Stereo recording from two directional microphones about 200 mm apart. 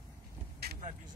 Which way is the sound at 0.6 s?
50° right (ahead or behind).